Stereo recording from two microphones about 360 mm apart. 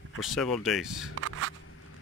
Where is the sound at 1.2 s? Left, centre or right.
Right.